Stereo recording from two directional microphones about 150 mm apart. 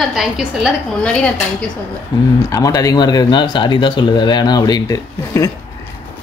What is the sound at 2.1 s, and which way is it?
Speech, 30° left (ahead or behind).